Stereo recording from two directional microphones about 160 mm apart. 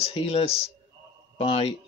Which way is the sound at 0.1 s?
35° left (ahead or behind).